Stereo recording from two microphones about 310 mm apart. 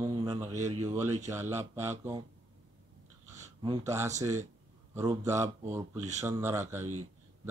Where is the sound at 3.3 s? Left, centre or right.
Centre.